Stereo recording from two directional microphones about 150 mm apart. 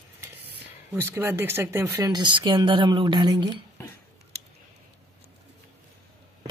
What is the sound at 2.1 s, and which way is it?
Speech, 30° right (ahead or behind).